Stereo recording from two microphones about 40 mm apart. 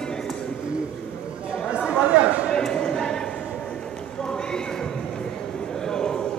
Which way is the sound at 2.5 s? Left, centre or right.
Centre.